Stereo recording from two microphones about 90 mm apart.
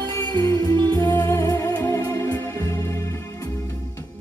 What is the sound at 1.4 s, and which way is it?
Music, 45° left (ahead or behind).